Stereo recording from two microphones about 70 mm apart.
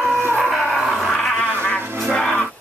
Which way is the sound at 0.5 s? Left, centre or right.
Centre.